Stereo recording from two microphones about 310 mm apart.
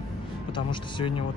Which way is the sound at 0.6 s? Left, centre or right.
Centre.